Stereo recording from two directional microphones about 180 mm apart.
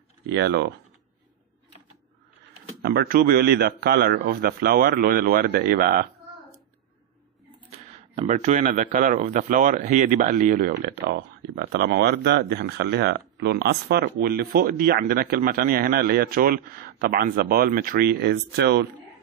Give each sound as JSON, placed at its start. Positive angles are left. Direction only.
{"t": 0.3, "sound": "speech", "side_deg": -75}
{"t": 2.8, "sound": "speech", "side_deg": -60}
{"t": 8.3, "sound": "speech", "side_deg": -40}
{"t": 10.7, "sound": "speech", "side_deg": -70}